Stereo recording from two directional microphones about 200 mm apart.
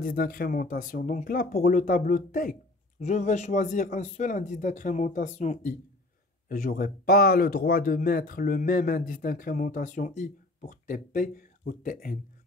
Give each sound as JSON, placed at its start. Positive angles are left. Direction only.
{"t": 0.0, "sound": "speech", "side_deg": 45}